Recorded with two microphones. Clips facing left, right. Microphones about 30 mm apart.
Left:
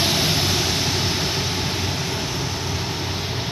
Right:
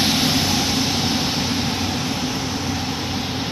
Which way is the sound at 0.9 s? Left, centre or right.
Right.